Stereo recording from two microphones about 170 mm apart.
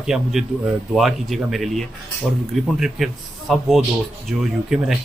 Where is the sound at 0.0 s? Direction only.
5° right (ahead or behind).